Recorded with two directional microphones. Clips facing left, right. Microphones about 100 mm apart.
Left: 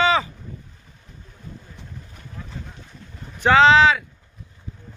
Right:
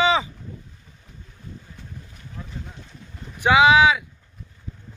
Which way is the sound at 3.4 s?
10° right (ahead or behind).